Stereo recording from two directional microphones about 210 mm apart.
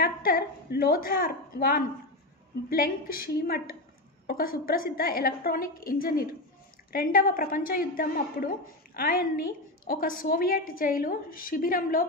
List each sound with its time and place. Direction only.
0.0 s a woman's voice: 45° left (ahead or behind)